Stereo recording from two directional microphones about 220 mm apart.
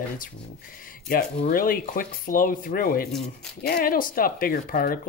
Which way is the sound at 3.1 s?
Centre (ahead or behind).